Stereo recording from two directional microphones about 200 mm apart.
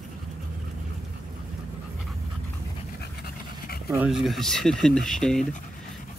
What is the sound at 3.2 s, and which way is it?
Pant, 50° left (ahead or behind).